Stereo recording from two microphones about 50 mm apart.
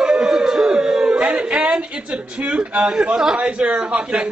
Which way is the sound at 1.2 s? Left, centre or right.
Right.